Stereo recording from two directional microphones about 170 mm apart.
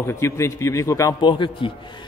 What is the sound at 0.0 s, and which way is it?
A man's voice, 15° left (ahead or behind).